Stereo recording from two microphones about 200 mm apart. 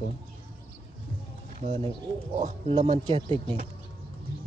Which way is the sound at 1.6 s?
35° right (ahead or behind).